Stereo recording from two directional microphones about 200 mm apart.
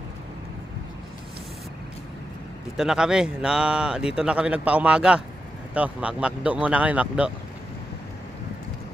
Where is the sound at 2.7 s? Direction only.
5° right (ahead or behind).